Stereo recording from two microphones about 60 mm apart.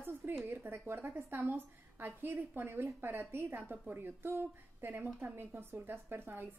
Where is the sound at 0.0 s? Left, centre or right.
Right.